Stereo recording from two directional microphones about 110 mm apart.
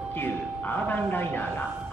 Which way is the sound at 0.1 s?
15° left (ahead or behind).